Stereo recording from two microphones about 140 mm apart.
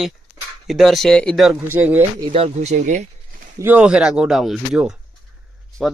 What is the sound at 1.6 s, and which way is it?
Speech, 15° right (ahead or behind).